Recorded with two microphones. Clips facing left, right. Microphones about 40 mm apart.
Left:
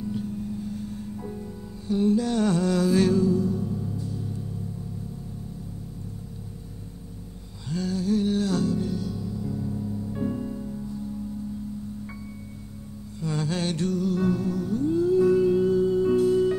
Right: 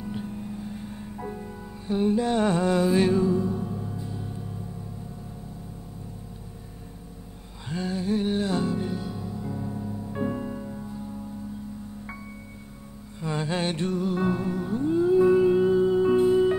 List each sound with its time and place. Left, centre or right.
0.0 s music: right
7.7 s music: right
13.2 s music: right